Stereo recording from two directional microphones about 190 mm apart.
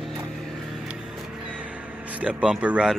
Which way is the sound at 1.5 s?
5° right (ahead or behind).